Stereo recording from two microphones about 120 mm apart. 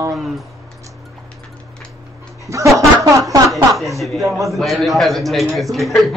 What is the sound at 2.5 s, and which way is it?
Speech, 25° right (ahead or behind).